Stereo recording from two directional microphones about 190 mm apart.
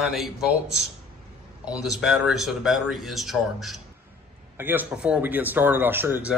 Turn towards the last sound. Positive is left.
turn(degrees=-10)  # may be behind; listen again after turning